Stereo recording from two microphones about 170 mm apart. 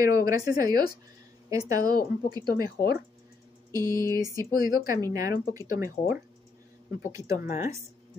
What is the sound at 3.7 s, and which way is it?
Speech, 20° right (ahead or behind).